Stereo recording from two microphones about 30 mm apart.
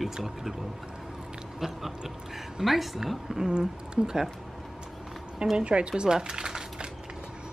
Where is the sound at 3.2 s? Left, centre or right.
Centre.